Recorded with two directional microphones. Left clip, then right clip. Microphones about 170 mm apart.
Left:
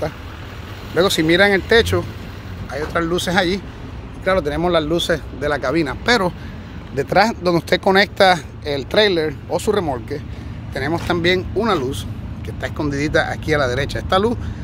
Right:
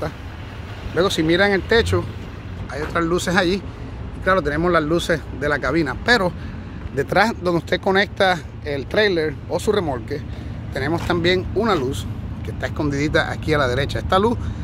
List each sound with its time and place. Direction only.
0.9 s speech: 15° left (ahead or behind); by 14.4 s centre (ahead or behind)